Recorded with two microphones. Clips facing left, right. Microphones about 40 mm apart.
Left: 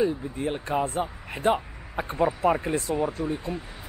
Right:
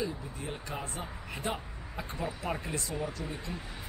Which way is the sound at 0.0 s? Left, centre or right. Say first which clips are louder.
Left 11 dB; left.